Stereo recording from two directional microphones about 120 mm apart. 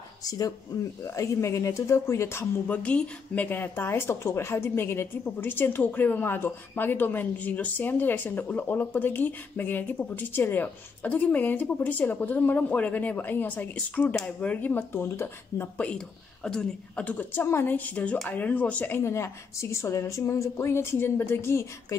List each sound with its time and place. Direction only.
0.2 s a woman's voice: 30° left (ahead or behind)